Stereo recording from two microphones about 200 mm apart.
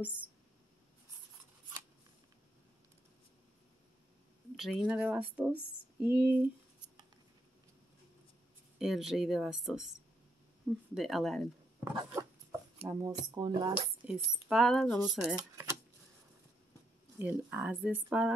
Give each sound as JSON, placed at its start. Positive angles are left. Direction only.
{"t": 0.0, "sound": "speech", "side_deg": -5}
{"t": 4.6, "sound": "speech", "side_deg": -5}
{"t": 8.7, "sound": "speech", "side_deg": 0}
{"t": 11.8, "sound": "dog", "side_deg": -20}
{"t": 12.8, "sound": "speech", "side_deg": -15}
{"t": 14.0, "sound": "speech", "side_deg": 0}
{"t": 17.2, "sound": "speech", "side_deg": -10}